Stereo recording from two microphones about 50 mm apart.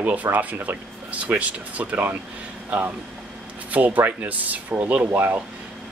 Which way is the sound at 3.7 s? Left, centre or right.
Right.